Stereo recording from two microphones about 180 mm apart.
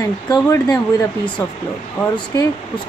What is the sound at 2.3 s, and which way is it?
Speech, 15° left (ahead or behind).